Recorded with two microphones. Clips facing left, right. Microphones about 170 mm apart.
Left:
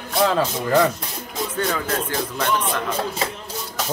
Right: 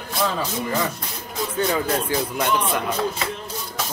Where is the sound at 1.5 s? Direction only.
15° right (ahead or behind).